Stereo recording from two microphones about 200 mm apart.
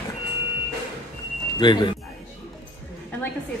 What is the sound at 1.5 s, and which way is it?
Speech, 20° left (ahead or behind).